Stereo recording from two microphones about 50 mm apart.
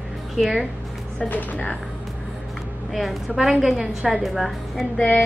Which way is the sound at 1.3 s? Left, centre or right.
Left.